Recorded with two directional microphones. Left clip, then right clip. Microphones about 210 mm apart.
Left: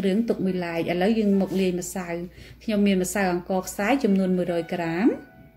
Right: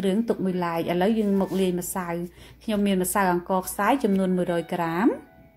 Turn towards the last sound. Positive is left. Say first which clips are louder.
# even
turn(degrees=-15)  # may be behind; listen again after turning